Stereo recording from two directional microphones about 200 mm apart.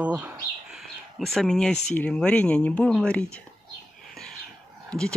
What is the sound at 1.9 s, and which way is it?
Speech, 5° left (ahead or behind).